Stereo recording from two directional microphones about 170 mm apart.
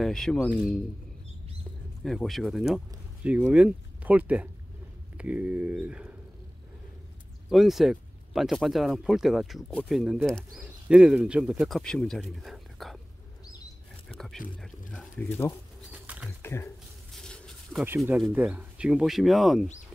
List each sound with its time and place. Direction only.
0.0 s speech: 5° left (ahead or behind)
2.0 s speech: centre (ahead or behind)
7.4 s speech: centre (ahead or behind)
14.0 s speech: centre (ahead or behind)
15.9 s bird flight: 10° right (ahead or behind)
16.4 s speech: 15° left (ahead or behind)
17.1 s a sound: 5° left (ahead or behind)
17.8 s speech: 15° right (ahead or behind)